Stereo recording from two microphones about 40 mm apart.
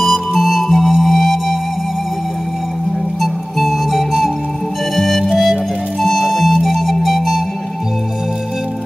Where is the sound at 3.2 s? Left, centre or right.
Centre.